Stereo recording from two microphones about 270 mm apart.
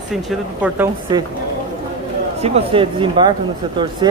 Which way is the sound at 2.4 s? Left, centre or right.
Right.